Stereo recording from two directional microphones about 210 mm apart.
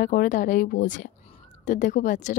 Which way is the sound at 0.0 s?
40° left (ahead or behind).